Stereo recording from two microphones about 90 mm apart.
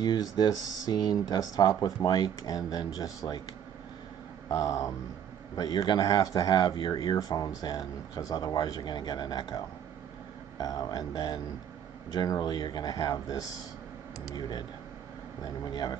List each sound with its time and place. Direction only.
0.0 s speech: 55° left (ahead or behind)
4.5 s speech: 40° left (ahead or behind)
5.6 s speech: 50° left (ahead or behind)
10.6 s speech: 45° left (ahead or behind)
15.4 s speech: 50° left (ahead or behind)